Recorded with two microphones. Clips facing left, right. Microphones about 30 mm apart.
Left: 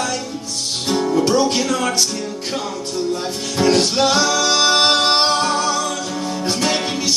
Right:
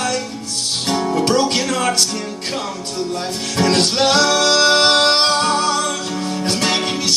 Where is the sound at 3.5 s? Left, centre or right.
Right.